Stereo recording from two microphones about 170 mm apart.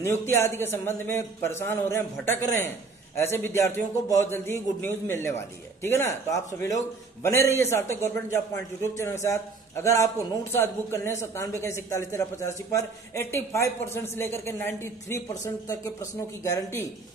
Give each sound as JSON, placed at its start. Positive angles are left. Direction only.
{"t": 0.0, "sound": "a man's voice", "side_deg": 15}